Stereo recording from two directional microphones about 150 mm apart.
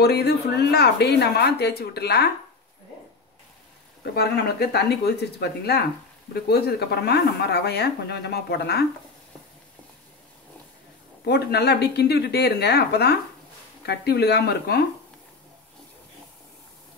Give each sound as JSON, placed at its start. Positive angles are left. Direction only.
{"t": 0.0, "sound": "speech", "side_deg": 90}
{"t": 4.0, "sound": "speech", "side_deg": 90}
{"t": 11.2, "sound": "speech", "side_deg": 90}